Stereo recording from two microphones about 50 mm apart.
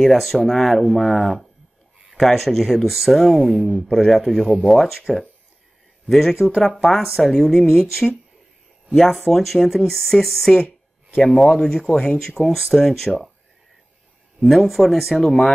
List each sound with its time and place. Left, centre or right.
0.0 s speech: centre
11.1 s speech: left
11.3 s speech: centre
14.4 s speech: centre